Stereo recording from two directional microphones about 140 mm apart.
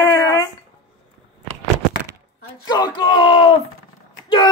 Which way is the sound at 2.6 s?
30° left (ahead or behind).